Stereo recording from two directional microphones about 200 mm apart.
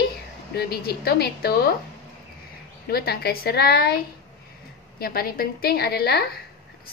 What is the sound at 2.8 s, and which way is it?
A woman's voice, 50° left (ahead or behind).